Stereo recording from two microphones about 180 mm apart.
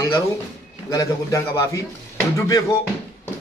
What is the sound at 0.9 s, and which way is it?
Speech, 20° left (ahead or behind).